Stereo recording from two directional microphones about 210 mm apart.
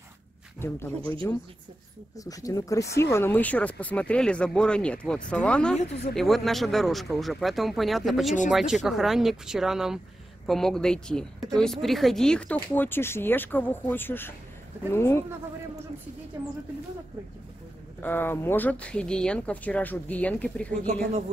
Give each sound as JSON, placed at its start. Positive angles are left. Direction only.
{"t": 0.6, "sound": "speech", "side_deg": 10}
{"t": 2.1, "sound": "speech", "side_deg": 15}
{"t": 18.0, "sound": "speech", "side_deg": 10}